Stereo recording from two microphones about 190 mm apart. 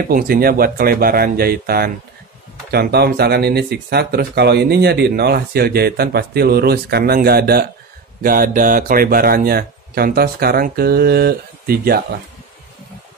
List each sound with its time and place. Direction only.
0.0 s speech: 50° right (ahead or behind)